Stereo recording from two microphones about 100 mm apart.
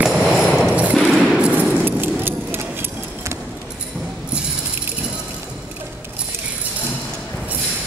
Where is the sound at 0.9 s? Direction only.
Centre (ahead or behind); by 3.3 s 20° right (ahead or behind).